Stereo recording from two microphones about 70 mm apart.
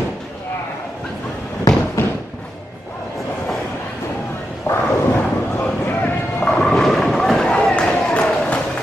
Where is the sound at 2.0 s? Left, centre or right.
Left.